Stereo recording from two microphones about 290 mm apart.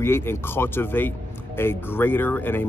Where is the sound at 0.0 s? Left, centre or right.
Centre.